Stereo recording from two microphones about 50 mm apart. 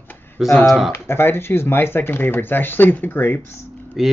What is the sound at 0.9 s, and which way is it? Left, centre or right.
Speech, left.